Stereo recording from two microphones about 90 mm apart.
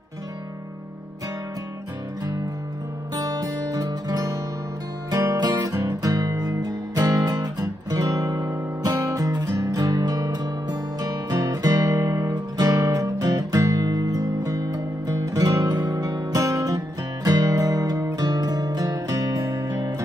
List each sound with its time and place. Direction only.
3.2 s music: 45° right (ahead or behind)